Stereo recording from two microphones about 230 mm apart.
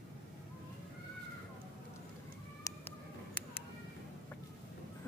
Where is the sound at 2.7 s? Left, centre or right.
Centre.